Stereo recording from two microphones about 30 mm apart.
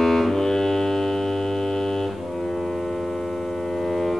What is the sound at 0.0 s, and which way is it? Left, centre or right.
Music, centre.